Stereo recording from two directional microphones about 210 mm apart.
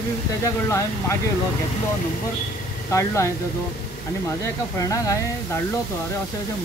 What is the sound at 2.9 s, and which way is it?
Speech, 15° left (ahead or behind).